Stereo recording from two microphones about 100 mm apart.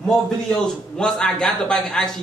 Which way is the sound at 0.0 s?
5° left (ahead or behind).